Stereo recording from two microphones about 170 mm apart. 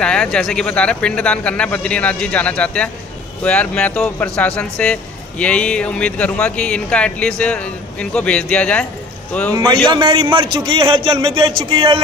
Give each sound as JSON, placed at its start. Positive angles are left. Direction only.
{"t": 0.0, "sound": "speech", "side_deg": 5}
{"t": 9.5, "sound": "a man's voice", "side_deg": -25}